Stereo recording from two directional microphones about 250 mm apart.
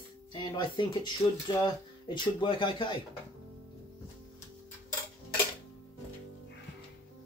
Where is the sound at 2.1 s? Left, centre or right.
Centre.